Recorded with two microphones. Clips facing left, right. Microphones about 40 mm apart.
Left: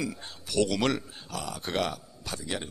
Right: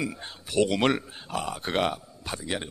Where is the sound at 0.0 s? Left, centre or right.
Right.